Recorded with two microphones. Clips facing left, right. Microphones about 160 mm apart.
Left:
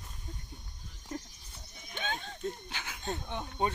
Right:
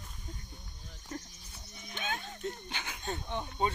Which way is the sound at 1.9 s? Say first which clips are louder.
Left 1 dB; 5° right (ahead or behind).